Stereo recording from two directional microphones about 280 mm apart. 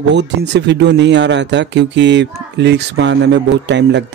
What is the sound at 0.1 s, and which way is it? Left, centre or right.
Speech, right.